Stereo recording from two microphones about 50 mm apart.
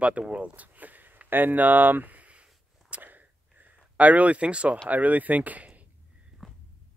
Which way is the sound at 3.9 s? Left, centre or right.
Right.